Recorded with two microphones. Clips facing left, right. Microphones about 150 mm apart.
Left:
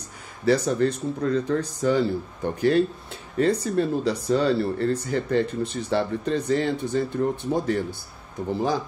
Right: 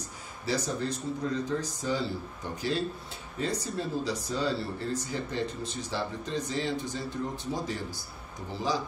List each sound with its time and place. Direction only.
0.5 s speech: 65° left (ahead or behind)